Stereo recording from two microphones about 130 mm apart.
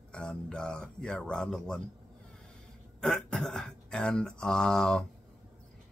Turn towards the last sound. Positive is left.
turn(degrees=5)  # may be behind; listen again after turning